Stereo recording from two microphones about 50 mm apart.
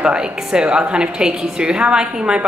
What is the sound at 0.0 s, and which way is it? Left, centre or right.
A woman's voice, centre.